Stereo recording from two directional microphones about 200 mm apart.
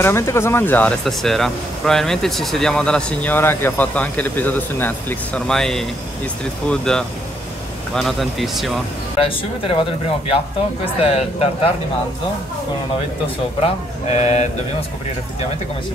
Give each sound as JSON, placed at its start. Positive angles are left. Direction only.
{"t": 0.0, "sound": "speech", "side_deg": 15}
{"t": 9.2, "sound": "speech", "side_deg": 25}
{"t": 11.0, "sound": "speech", "side_deg": 30}
{"t": 14.0, "sound": "speech", "side_deg": 35}